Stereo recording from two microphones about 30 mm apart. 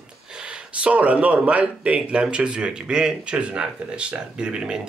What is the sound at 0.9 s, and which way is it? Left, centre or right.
Speech, right.